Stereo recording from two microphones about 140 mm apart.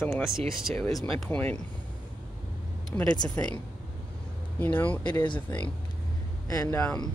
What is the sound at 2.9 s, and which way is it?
Speech, 15° left (ahead or behind).